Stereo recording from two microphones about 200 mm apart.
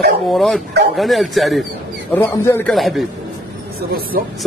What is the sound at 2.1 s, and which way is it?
Speech, 10° left (ahead or behind).